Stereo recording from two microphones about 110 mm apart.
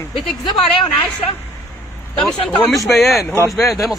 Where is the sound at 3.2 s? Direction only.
25° left (ahead or behind).